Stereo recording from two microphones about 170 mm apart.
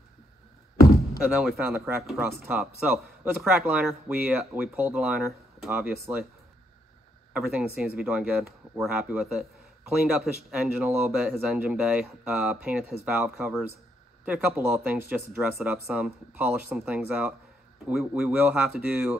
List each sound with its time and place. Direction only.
0.7 s a sound: 20° left (ahead or behind)
1.2 s speech: 5° right (ahead or behind)
7.3 s speech: 5° right (ahead or behind)